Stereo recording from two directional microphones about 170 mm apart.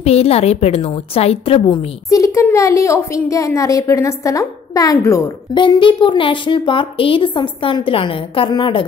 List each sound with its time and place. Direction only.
0.0 s a woman's voice: 35° left (ahead or behind)
2.0 s a woman's voice: 20° left (ahead or behind)
5.6 s a woman's voice: 30° left (ahead or behind)